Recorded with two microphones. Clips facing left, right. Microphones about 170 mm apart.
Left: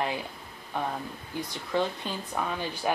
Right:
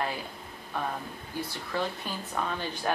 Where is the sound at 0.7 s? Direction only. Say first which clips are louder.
Left 2 dB; 15° left (ahead or behind).